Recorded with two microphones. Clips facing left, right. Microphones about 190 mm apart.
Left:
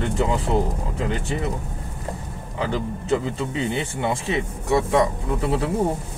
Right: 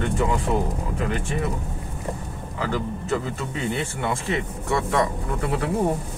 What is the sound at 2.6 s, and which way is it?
Speech, 20° left (ahead or behind).